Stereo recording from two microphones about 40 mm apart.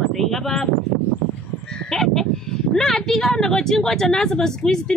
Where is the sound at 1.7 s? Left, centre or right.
Centre.